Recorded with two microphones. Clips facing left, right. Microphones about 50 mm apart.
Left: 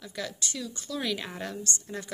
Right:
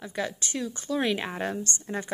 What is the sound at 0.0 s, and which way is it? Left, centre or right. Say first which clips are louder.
Speech: right 4 dB; right.